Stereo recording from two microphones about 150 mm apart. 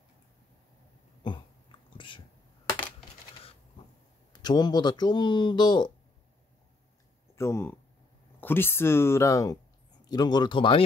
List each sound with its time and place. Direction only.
1.2 s dog: 35° left (ahead or behind)
4.3 s speech: 30° left (ahead or behind)
7.3 s speech: 15° left (ahead or behind); by 10.8 s 35° left (ahead or behind)